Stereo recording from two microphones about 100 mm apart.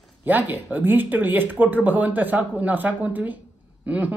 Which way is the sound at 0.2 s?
20° right (ahead or behind).